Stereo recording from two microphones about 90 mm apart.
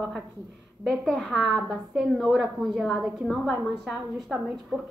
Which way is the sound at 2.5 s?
Centre (ahead or behind).